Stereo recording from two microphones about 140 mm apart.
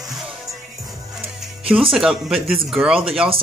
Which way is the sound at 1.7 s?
Centre (ahead or behind).